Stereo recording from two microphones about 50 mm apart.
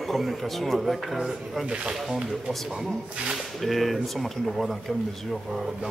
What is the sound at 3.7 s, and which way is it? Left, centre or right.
Speech, centre.